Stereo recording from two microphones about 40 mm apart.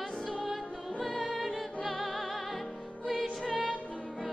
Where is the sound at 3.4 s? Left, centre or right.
Left.